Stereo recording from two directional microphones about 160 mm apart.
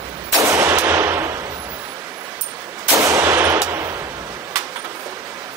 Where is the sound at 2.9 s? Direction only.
20° right (ahead or behind).